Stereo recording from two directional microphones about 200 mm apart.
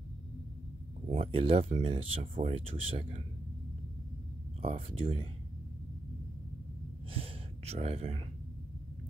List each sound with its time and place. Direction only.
1.0 s speech: 30° right (ahead or behind)
4.6 s speech: 30° right (ahead or behind)
7.1 s gasp: 30° right (ahead or behind)